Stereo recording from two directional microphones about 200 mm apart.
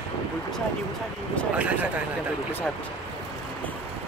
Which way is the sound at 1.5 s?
5° right (ahead or behind).